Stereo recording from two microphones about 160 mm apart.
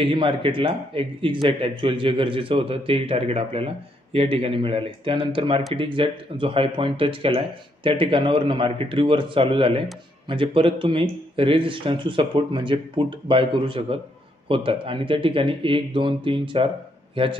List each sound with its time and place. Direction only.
0.0 s a man's voice: 30° right (ahead or behind)